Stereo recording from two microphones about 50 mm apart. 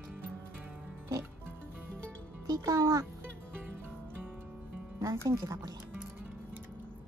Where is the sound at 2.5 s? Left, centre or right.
Right.